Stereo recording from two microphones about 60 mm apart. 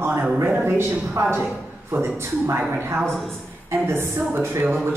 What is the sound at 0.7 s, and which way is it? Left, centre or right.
A man's voice, right.